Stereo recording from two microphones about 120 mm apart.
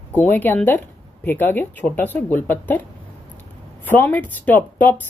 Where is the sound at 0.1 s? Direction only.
15° left (ahead or behind).